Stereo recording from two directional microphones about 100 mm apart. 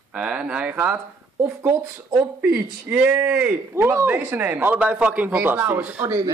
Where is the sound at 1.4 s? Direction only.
25° right (ahead or behind).